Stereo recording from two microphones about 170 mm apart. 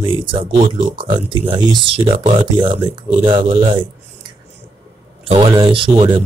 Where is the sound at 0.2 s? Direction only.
30° right (ahead or behind).